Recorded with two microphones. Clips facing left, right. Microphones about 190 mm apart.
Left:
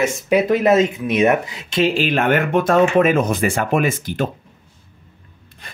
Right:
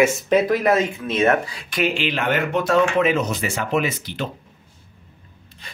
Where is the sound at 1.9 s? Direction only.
45° left (ahead or behind).